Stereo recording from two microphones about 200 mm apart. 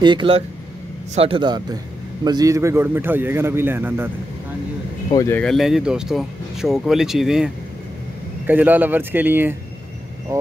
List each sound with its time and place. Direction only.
0.0 s a man's voice: 25° right (ahead or behind)
5.1 s speech: 15° left (ahead or behind)
5.4 s a man's voice: centre (ahead or behind)